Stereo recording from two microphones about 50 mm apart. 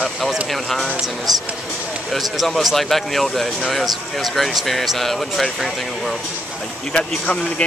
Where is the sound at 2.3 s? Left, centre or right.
Centre.